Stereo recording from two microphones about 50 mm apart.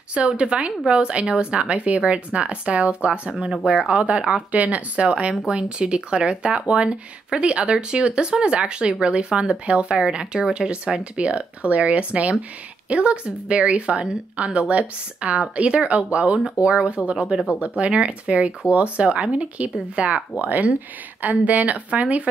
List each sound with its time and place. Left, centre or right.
0.1 s speech: right